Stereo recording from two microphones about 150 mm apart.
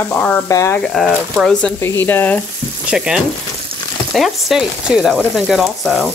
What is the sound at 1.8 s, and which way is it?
Frying, 15° left (ahead or behind).